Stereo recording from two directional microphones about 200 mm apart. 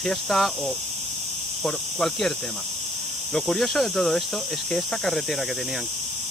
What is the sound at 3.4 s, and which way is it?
Speech, centre (ahead or behind).